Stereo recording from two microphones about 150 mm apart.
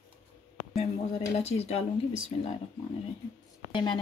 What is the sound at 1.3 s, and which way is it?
Speech, 45° left (ahead or behind).